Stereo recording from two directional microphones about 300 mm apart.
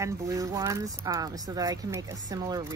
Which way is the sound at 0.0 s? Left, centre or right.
Centre.